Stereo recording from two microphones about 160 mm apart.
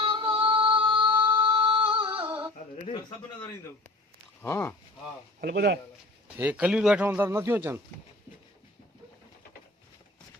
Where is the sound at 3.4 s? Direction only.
15° left (ahead or behind).